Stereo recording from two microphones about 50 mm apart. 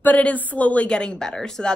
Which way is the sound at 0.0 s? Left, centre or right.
Left.